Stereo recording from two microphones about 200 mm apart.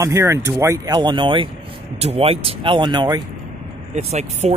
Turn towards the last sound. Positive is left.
turn(degrees=-35)  # may be behind; listen again after turning